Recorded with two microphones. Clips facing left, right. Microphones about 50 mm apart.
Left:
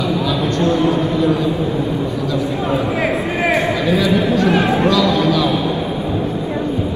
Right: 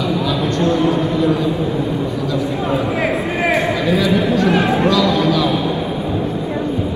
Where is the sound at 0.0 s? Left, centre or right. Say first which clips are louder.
Even; right.